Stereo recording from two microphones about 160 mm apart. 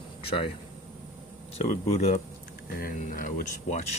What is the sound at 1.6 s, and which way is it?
Speech, 45° left (ahead or behind).